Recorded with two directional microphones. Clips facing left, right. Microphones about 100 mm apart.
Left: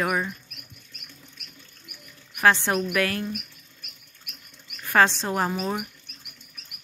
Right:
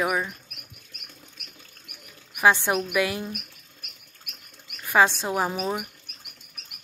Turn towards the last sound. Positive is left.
turn(degrees=-10)  # may be behind; listen again after turning